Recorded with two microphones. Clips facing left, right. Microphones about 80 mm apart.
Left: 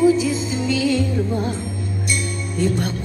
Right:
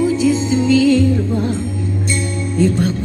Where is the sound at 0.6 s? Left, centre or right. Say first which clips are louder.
Right 8 dB; centre.